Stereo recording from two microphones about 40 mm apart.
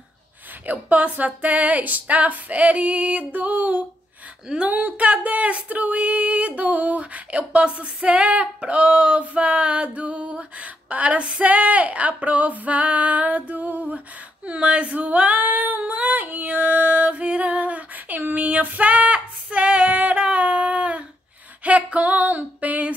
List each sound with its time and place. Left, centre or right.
0.7 s music: right
10.6 s a woman's voice: right
11.4 s music: right
15.9 s female singing: right
16.4 s female singing: right
19.9 s a sound: right
21.6 s music: right